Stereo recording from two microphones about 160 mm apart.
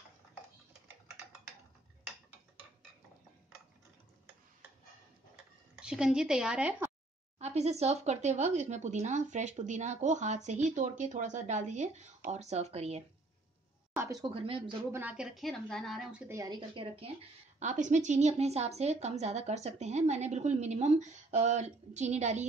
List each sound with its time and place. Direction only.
5.8 s a woman's voice: 5° right (ahead or behind)
7.3 s a woman's voice: 45° right (ahead or behind)
13.9 s a sound: 15° right (ahead or behind)
14.2 s speech: 35° right (ahead or behind)
14.9 s a woman's voice: 10° right (ahead or behind)
16.3 s a woman's voice: 25° right (ahead or behind); by 22.5 s 45° right (ahead or behind)